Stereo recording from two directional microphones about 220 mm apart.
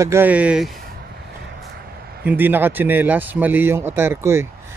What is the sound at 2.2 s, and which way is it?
Speech, 10° right (ahead or behind).